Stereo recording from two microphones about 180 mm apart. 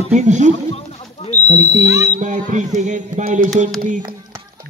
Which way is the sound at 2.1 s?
45° right (ahead or behind).